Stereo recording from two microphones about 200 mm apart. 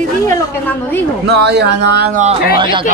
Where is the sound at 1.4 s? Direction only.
55° right (ahead or behind).